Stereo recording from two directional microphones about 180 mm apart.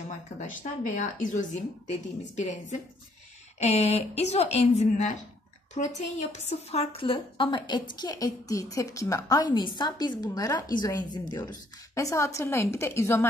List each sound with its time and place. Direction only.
0.4 s a woman's voice: 45° left (ahead or behind)
3.5 s a woman's voice: 35° left (ahead or behind); by 13.3 s 15° left (ahead or behind)